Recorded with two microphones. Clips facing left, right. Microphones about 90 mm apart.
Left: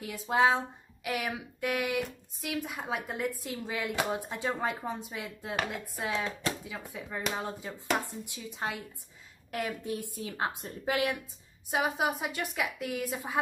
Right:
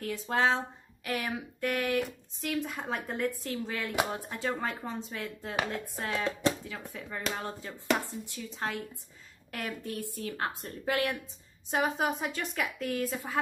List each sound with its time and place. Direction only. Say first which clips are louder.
0.0 s speech: left 2 dB; 10° left (ahead or behind)